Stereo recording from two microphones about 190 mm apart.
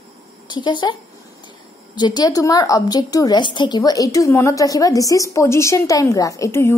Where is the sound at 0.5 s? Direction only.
25° left (ahead or behind).